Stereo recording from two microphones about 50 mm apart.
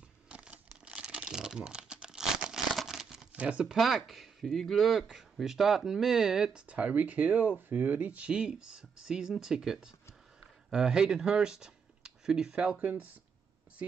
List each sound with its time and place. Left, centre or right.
0.3 s a sound: right
1.0 s crumpling: centre
3.3 s speech: right
3.7 s speech: centre; by 8.3 s right
8.3 s speech: centre
12.5 s speech: right